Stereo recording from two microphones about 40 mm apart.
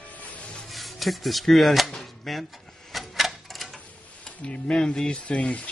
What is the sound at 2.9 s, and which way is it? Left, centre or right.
Typewriter, centre.